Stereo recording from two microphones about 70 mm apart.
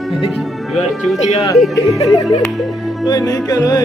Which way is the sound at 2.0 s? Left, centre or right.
Left.